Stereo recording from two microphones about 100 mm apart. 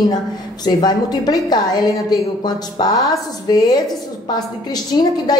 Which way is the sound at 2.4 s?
45° left (ahead or behind).